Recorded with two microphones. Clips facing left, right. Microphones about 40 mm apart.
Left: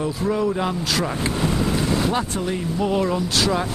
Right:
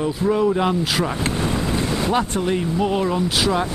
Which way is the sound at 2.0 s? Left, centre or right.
Right.